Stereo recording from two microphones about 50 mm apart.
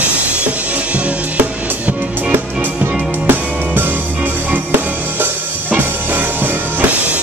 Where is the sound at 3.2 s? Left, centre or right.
Right.